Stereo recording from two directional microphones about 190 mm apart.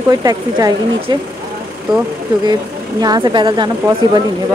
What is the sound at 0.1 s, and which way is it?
Speech, 20° right (ahead or behind).